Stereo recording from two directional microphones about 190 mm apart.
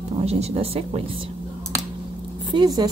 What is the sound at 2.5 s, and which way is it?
Speech, 20° right (ahead or behind).